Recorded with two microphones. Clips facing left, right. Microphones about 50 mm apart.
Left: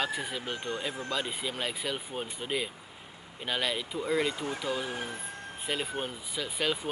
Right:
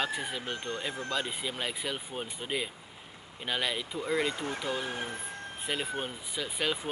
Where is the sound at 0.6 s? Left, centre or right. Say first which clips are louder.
Left 1 dB; centre.